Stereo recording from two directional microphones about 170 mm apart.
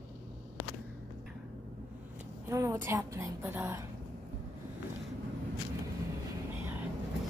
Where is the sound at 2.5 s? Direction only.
20° right (ahead or behind).